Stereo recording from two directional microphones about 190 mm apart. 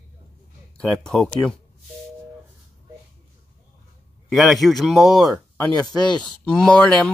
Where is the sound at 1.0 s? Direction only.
Centre (ahead or behind).